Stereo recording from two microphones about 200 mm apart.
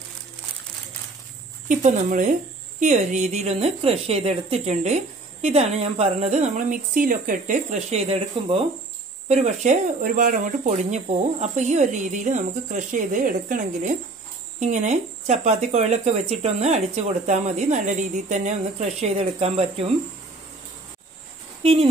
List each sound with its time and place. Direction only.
1.7 s a woman's voice: 40° right (ahead or behind)